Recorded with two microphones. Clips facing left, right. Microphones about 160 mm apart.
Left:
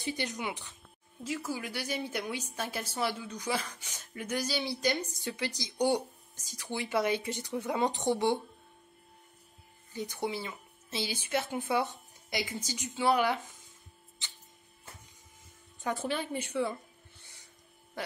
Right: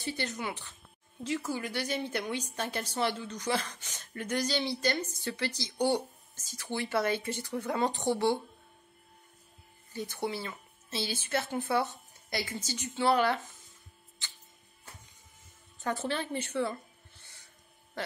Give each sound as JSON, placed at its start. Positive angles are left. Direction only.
{"t": 0.0, "sound": "a woman's voice", "side_deg": 15}
{"t": 9.9, "sound": "a woman's voice", "side_deg": 15}
{"t": 15.8, "sound": "a woman's voice", "side_deg": 10}